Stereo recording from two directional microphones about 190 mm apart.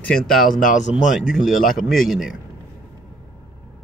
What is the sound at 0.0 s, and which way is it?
Speech, 5° left (ahead or behind).